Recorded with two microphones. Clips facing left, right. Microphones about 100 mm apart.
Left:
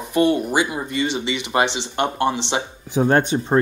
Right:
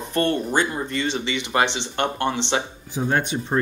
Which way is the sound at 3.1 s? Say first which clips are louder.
Left 4 dB; 35° left (ahead or behind).